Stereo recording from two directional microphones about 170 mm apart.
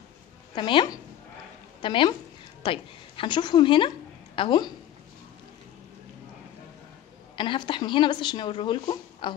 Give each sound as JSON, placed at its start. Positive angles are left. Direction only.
{"t": 0.6, "sound": "speech", "side_deg": 30}
{"t": 7.3, "sound": "speech", "side_deg": 30}